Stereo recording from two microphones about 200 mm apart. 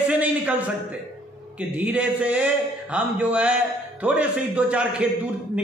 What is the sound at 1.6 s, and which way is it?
A man's voice, 5° right (ahead or behind).